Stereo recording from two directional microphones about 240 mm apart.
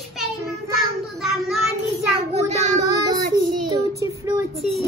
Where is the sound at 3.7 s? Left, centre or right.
Centre.